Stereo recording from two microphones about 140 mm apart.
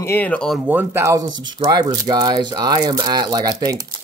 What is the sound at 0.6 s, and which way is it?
Speech, 15° right (ahead or behind).